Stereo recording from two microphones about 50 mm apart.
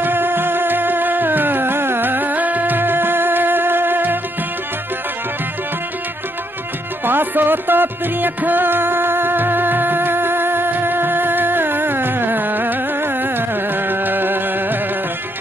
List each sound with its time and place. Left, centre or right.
0.0 s music: right
7.1 s music: right